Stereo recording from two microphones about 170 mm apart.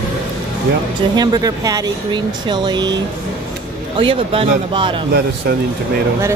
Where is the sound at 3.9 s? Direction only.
30° right (ahead or behind).